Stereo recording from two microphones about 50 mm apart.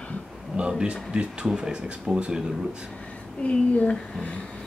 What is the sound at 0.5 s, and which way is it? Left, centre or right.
Speech, right.